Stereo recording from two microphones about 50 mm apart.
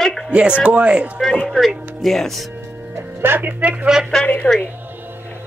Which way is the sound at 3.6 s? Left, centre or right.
Right.